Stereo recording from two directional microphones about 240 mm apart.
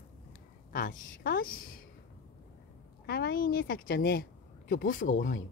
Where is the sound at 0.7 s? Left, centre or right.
Left.